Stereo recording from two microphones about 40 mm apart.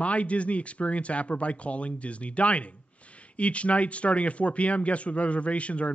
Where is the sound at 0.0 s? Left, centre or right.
Left.